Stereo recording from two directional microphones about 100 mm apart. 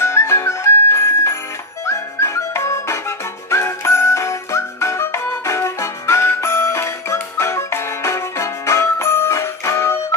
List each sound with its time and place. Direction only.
0.0 s music: 25° left (ahead or behind)